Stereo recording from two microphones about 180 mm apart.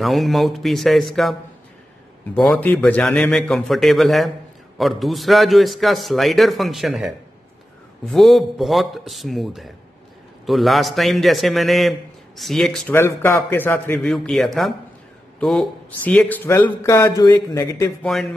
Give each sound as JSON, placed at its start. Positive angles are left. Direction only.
{"t": 0.0, "sound": "a man's voice", "side_deg": 0}
{"t": 2.3, "sound": "a man's voice", "side_deg": 0}
{"t": 12.9, "sound": "a man's voice", "side_deg": 15}
{"t": 18.0, "sound": "a man's voice", "side_deg": 0}